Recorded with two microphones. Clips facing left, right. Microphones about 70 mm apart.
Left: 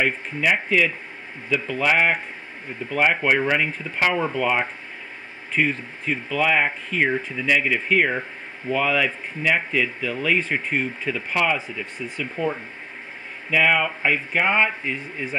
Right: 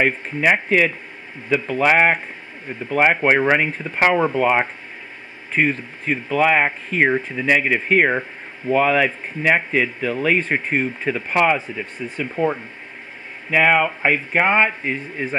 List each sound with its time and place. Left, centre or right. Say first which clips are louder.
0.0 s speech: right 4 dB; right